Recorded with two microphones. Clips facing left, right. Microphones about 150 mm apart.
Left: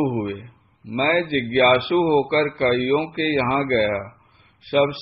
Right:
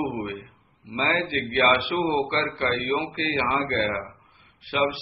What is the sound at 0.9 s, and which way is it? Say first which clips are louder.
A man's voice: left 6 dB; 35° left (ahead or behind).